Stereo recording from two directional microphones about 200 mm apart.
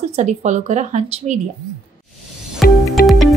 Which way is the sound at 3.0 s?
50° left (ahead or behind).